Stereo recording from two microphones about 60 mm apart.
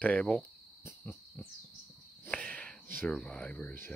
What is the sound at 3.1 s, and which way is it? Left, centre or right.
Speech, centre.